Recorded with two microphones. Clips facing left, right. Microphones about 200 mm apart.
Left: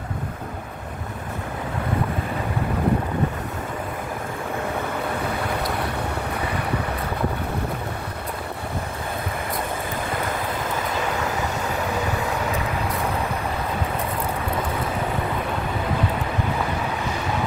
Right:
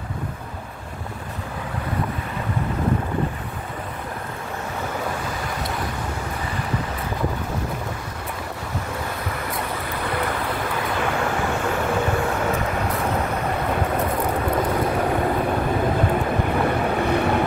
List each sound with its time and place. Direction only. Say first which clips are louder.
17.0 s boat: right 7 dB; 60° right (ahead or behind)